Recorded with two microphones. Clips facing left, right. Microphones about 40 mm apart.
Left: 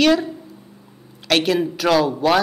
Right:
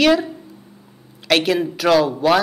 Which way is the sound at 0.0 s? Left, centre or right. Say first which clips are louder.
Right 1 dB; centre.